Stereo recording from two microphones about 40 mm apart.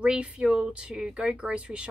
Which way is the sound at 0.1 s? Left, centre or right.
Right.